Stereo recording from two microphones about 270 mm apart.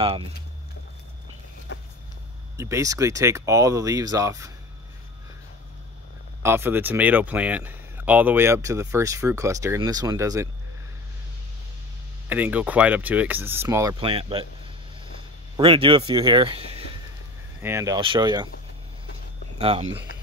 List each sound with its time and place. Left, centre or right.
2.5 s speech: centre
6.4 s speech: centre
12.3 s speech: centre
15.5 s speech: centre
19.6 s speech: right